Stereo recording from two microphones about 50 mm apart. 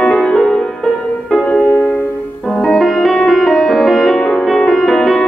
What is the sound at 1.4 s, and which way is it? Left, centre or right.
Music, left.